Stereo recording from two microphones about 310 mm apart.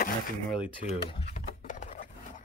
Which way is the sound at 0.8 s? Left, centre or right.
Left.